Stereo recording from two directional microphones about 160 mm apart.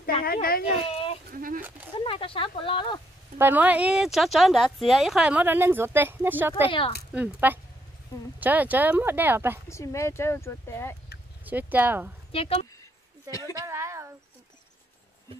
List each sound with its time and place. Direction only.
0.2 s speech: 65° left (ahead or behind)
0.8 s sheep: 40° left (ahead or behind)
1.3 s speech: 60° right (ahead or behind)
2.0 s speech: 35° left (ahead or behind)
3.3 s speech: 10° right (ahead or behind)
9.7 s speech: 20° left (ahead or behind)
11.4 s speech: 10° right (ahead or behind)
12.3 s speech: 35° left (ahead or behind)
13.6 s a sound: 15° right (ahead or behind)